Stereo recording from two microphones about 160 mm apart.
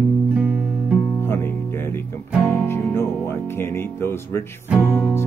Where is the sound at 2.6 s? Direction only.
15° left (ahead or behind).